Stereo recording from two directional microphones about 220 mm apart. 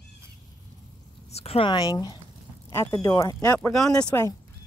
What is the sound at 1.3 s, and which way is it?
Speech, 25° left (ahead or behind).